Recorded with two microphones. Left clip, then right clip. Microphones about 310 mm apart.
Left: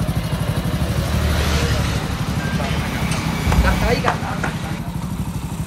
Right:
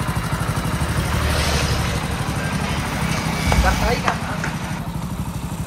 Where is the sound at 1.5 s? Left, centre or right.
Right.